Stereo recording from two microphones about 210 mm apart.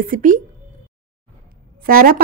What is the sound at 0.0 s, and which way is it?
Speech, 40° right (ahead or behind).